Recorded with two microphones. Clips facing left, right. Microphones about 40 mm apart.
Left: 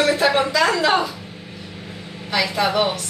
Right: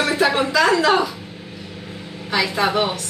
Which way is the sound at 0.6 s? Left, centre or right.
Centre.